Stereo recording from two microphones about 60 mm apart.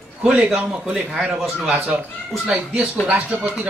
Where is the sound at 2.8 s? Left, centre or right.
Centre.